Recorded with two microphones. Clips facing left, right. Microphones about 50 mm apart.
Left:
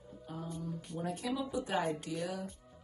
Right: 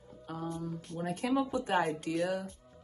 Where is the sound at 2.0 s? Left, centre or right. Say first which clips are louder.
Right 6 dB; right.